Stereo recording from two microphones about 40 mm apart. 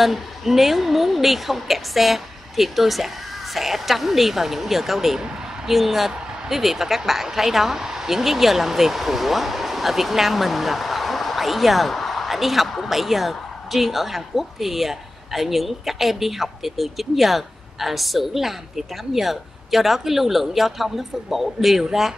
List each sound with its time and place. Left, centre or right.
0.0 s a woman's voice: centre